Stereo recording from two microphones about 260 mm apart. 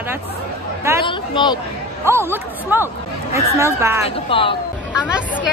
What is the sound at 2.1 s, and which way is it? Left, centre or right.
A woman's voice, centre.